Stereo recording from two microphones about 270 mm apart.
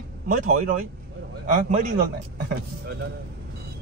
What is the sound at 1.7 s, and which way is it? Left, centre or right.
Speech, right.